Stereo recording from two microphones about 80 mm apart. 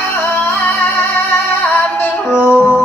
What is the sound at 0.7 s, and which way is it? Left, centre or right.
Music, left.